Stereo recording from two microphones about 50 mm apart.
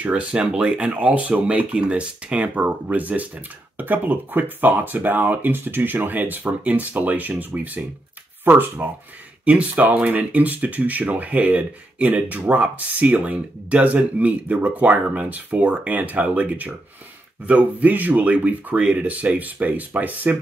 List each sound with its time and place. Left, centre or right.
0.0 s speech: right
9.4 s speech: right